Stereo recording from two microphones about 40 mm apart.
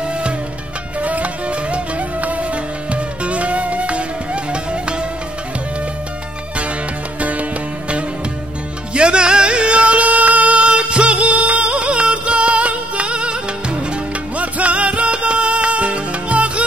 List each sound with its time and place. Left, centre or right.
1.0 s music: right
7.2 s music: right
8.9 s music: right